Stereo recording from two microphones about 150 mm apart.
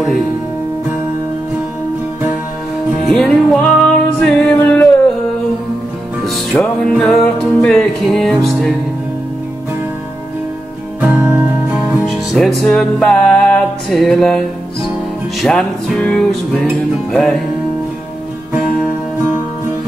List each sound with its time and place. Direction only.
3.1 s music: 5° left (ahead or behind)
6.2 s music: centre (ahead or behind)
11.0 s music: 15° right (ahead or behind)
12.3 s music: centre (ahead or behind)